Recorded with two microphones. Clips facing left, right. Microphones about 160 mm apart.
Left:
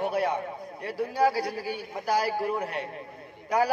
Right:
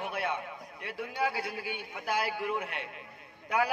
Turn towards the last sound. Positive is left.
turn(degrees=40)  # may be behind; listen again after turning